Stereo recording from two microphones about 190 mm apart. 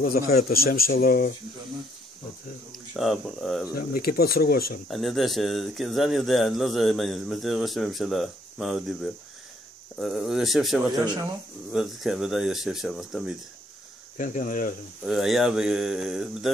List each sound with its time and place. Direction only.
0.0 s speech: 55° left (ahead or behind)
3.0 s speech: centre (ahead or behind)
3.7 s speech: 55° left (ahead or behind)
4.8 s speech: centre (ahead or behind)
14.1 s speech: 45° left (ahead or behind)
15.0 s speech: centre (ahead or behind)